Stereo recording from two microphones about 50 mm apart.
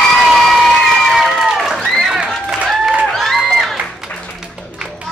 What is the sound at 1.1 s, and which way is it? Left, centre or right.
Crowd, centre.